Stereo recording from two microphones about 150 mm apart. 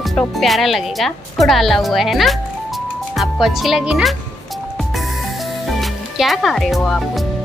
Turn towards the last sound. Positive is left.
turn(degrees=0)  # may be behind; listen again after turning